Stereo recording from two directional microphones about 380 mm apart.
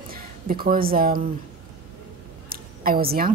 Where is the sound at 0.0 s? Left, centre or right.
Right.